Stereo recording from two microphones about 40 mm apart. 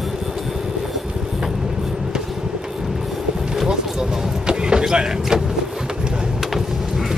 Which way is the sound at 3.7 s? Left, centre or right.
Centre.